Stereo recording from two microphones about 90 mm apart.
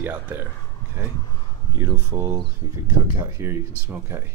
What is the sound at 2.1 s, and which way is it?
Speech, 25° right (ahead or behind).